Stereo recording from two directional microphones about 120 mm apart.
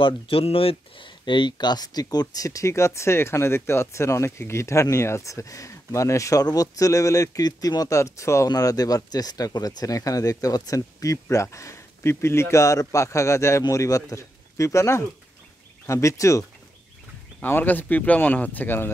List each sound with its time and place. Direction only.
0.0 s speech: 50° left (ahead or behind); by 16.4 s 25° left (ahead or behind)
17.4 s speech: 15° left (ahead or behind)